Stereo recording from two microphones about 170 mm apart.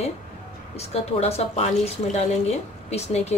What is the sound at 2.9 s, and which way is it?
Speech, 40° left (ahead or behind).